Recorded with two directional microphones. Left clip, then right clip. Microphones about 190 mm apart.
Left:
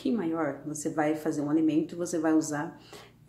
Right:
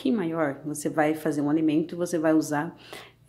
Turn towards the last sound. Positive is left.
turn(degrees=-30)  # may be behind; listen again after turning